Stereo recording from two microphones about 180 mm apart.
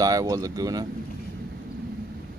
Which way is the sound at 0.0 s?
20° right (ahead or behind).